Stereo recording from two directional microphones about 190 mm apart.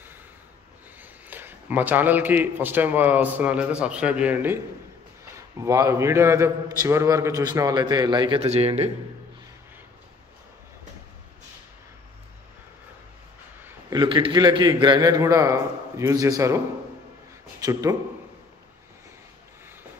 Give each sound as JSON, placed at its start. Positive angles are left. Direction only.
{"t": 1.3, "sound": "a man's voice", "side_deg": -10}
{"t": 13.7, "sound": "a man's voice", "side_deg": -20}